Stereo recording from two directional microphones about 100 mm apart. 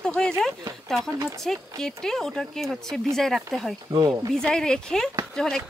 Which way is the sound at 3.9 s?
45° right (ahead or behind).